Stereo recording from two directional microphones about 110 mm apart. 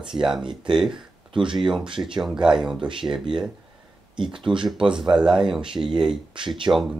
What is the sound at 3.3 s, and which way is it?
Speech, 45° right (ahead or behind).